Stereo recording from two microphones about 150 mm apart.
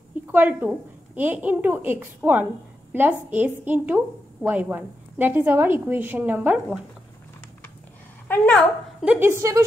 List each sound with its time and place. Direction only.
0.3 s a woman's voice: 10° right (ahead or behind)
8.3 s a woman's voice: 10° left (ahead or behind)
9.0 s a woman's voice: 10° right (ahead or behind)